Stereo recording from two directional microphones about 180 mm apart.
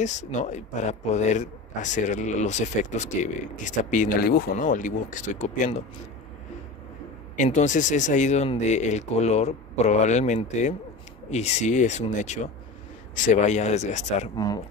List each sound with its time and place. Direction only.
0.0 s speech: 40° left (ahead or behind)
7.3 s speech: 40° left (ahead or behind)
14.3 s speech: 20° left (ahead or behind)